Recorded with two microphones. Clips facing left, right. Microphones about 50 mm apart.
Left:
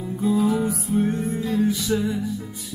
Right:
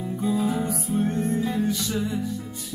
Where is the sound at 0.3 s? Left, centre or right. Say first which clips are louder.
Left 4 dB; centre.